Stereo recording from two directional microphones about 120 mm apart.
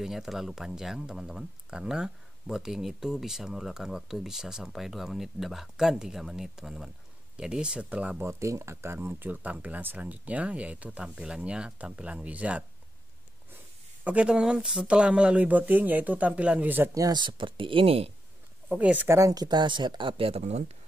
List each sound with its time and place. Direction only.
0.0 s speech: 5° right (ahead or behind)
8.2 s speech: 25° right (ahead or behind)
14.0 s speech: 10° right (ahead or behind)
16.9 s speech: 35° right (ahead or behind); by 18.1 s 50° right (ahead or behind)
18.7 s speech: 10° right (ahead or behind)
19.1 s speech: 30° right (ahead or behind); by 20.7 s 65° right (ahead or behind)